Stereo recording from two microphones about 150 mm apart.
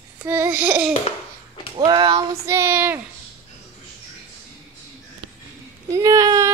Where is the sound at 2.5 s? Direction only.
15° right (ahead or behind).